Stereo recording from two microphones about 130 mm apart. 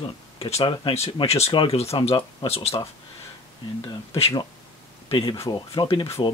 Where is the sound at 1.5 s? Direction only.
40° left (ahead or behind).